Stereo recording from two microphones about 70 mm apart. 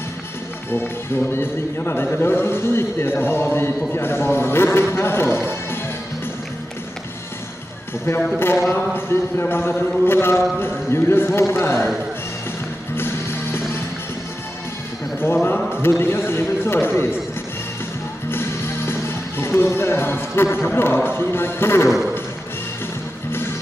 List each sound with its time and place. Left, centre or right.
1.3 s a man's voice: left
8.7 s a man's voice: left
12.9 s music: left
15.2 s a man's voice: left
18.3 s speech: left